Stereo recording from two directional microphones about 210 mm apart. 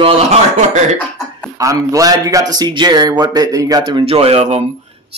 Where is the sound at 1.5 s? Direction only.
15° right (ahead or behind).